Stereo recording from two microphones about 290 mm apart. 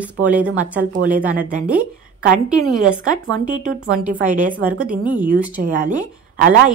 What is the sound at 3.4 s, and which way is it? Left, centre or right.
Speech, right.